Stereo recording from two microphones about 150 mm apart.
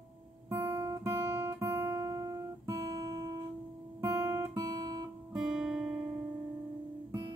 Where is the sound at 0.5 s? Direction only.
15° right (ahead or behind).